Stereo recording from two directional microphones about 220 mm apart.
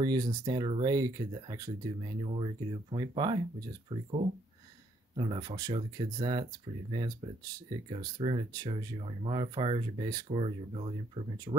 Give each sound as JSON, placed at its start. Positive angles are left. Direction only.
{"t": 0.0, "sound": "speech", "side_deg": -15}